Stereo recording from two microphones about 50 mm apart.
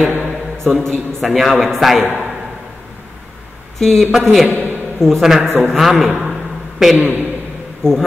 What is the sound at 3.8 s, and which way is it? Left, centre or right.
A man's voice, centre.